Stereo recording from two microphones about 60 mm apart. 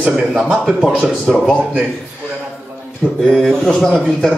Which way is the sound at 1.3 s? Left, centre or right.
Centre.